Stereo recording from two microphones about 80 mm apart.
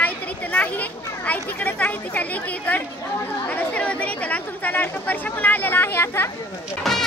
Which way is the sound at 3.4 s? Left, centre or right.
Centre.